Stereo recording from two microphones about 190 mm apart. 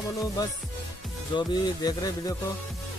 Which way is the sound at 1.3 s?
20° left (ahead or behind).